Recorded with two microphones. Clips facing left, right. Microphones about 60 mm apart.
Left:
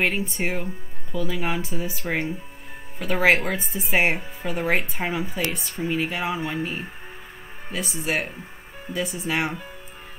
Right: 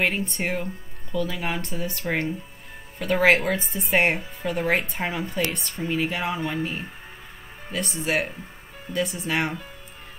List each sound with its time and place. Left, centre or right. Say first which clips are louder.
0.0 s speech: left 1 dB; centre